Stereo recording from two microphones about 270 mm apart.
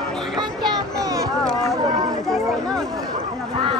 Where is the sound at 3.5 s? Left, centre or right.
Centre.